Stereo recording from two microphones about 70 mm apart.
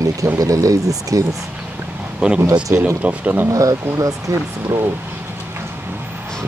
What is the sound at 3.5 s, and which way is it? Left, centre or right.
Speech, right.